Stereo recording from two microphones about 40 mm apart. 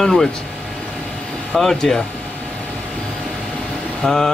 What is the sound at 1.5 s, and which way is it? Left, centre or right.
Speech, centre.